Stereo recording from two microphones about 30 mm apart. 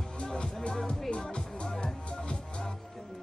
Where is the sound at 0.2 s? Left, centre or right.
Left.